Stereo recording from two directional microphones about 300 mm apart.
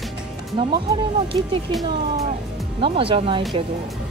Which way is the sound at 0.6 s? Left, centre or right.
Centre.